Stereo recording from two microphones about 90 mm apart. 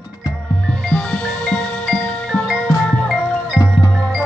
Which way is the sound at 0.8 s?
10° left (ahead or behind).